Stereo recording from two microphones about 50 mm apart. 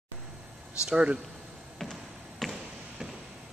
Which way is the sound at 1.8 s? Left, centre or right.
Centre.